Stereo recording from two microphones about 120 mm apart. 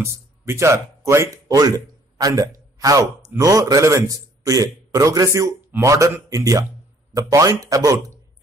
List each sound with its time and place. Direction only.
0.0 s a man's voice: 20° right (ahead or behind)